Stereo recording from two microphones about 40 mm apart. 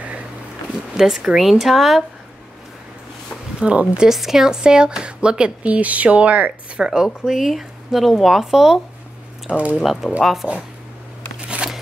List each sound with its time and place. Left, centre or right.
0.9 s speech: centre
3.5 s speech: right
4.1 s speech: centre
5.7 s speech: right
6.8 s speech: centre
9.5 s speech: right
10.2 s speech: centre
11.3 s shuffling cards: right